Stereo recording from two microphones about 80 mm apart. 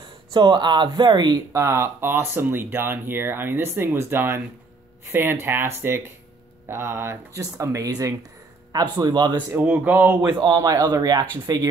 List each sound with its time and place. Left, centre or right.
0.3 s speech: right
1.5 s speech: right
8.7 s speech: right
9.7 s speech: centre
10.2 s speech: right